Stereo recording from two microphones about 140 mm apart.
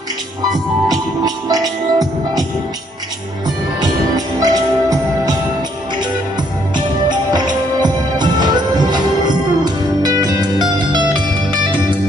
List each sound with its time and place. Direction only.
0.8 s music: 30° right (ahead or behind)
3.4 s music: 30° right (ahead or behind)
7.1 s music: 30° right (ahead or behind)